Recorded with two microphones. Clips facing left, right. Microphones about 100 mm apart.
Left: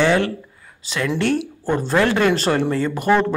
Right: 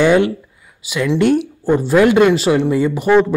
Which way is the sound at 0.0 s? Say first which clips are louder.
Right 5 dB; 20° right (ahead or behind).